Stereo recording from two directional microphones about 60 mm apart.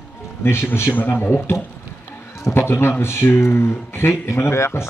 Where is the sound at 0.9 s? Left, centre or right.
Left.